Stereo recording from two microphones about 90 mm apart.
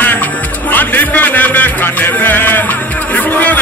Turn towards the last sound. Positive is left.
turn(degrees=20)  # may be behind; listen again after turning